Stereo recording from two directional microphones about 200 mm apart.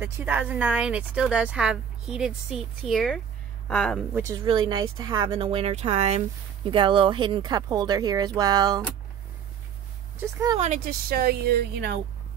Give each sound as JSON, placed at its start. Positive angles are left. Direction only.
{"t": 0.0, "sound": "a woman's voice", "side_deg": -10}
{"t": 4.2, "sound": "speech", "side_deg": -20}
{"t": 10.3, "sound": "speech", "side_deg": -15}
{"t": 10.6, "sound": "speech", "side_deg": -40}